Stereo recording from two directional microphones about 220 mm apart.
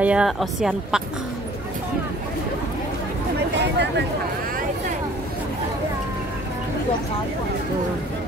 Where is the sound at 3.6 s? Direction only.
50° right (ahead or behind).